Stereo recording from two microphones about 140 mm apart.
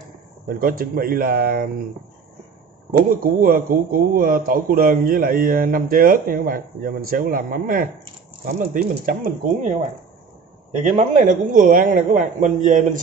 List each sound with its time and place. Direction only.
0.5 s a man's voice: 90° right
3.1 s a man's voice: 80° right
8.5 s speech: 65° right (ahead or behind)
10.8 s a man's voice: 60° right (ahead or behind)